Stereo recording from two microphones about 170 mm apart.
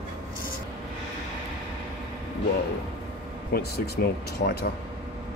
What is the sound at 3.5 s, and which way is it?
Speech, 70° left (ahead or behind).